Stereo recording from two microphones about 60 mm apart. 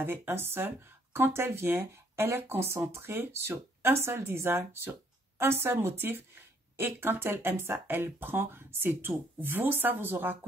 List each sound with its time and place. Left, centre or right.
0.0 s speech: right